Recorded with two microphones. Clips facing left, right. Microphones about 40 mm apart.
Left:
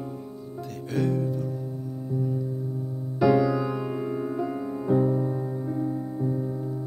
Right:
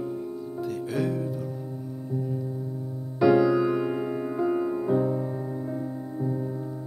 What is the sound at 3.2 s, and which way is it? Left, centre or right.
Music, centre.